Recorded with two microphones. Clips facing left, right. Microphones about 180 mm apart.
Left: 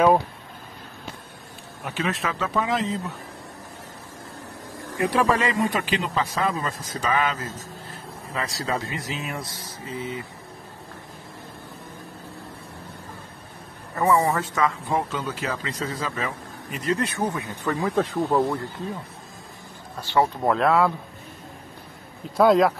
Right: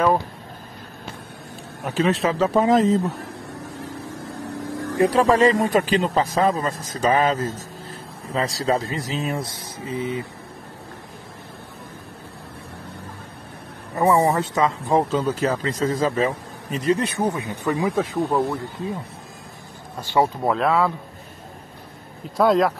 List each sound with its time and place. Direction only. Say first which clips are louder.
2.0 s speech: right 8 dB; 35° right (ahead or behind)
4.9 s speech: right 5 dB; 35° right (ahead or behind)
8.4 s speech: right 6 dB; 30° right (ahead or behind)
9.6 s speech: right 5 dB; 20° right (ahead or behind)
14.0 s speech: right 3 dB; 25° right (ahead or behind)
16.7 s speech: right 4 dB; 20° right (ahead or behind)
17.6 s speech: right 2 dB; 10° right (ahead or behind)
20.0 s speech: right 2 dB; 15° right (ahead or behind)
20.4 s speech: even; centre (ahead or behind)
22.4 s speech: left 1 dB; centre (ahead or behind)